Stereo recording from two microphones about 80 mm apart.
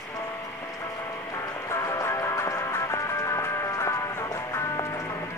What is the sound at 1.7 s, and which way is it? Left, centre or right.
Music, left.